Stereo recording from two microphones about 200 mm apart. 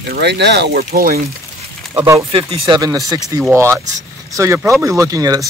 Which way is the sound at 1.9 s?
15° right (ahead or behind).